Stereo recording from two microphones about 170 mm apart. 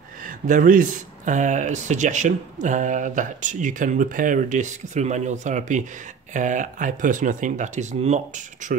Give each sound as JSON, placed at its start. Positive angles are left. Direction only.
{"t": 0.2, "sound": "speech", "side_deg": -50}